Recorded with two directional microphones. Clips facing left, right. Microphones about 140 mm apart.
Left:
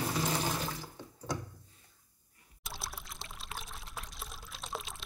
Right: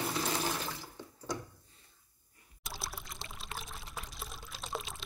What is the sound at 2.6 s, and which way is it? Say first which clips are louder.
Pour: right 1 dB; centre (ahead or behind).